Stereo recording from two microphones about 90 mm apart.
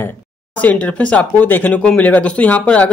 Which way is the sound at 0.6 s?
15° left (ahead or behind).